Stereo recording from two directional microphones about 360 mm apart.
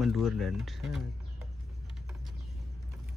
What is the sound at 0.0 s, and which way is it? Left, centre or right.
Speech, centre.